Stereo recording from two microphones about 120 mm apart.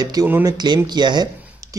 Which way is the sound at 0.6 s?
35° right (ahead or behind).